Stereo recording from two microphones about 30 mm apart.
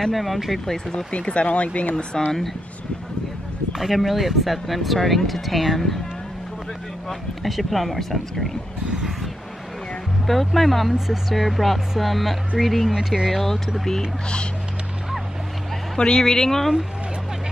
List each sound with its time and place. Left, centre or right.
0.0 s speech: centre
0.7 s speech: centre
1.1 s speech: left
2.1 s speech: centre
3.7 s speech: centre
7.1 s speech: centre
10.2 s speech: centre
12.9 s speech: right
16.0 s speech: left
16.3 s speech: centre